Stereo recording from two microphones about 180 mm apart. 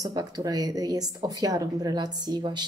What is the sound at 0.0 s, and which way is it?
Speech, 20° right (ahead or behind).